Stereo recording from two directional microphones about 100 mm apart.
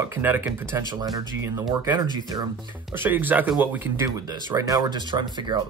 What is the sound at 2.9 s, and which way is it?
Speech, 20° right (ahead or behind).